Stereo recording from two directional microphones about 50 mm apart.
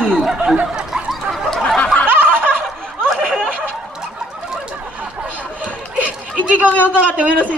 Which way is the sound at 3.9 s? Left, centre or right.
Centre.